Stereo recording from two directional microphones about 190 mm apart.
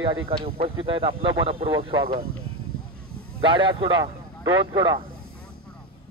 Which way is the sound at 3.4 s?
25° right (ahead or behind).